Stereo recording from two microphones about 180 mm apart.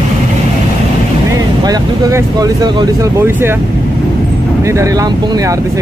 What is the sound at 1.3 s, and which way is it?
Speech, 20° right (ahead or behind).